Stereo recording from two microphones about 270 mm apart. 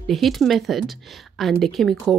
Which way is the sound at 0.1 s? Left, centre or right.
Centre.